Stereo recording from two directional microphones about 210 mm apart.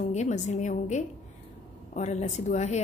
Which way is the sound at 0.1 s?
35° left (ahead or behind).